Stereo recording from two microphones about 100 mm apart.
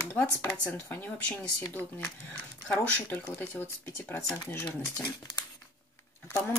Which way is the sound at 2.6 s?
15° left (ahead or behind).